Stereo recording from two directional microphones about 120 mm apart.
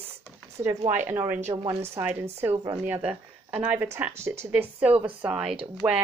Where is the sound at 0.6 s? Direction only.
25° right (ahead or behind).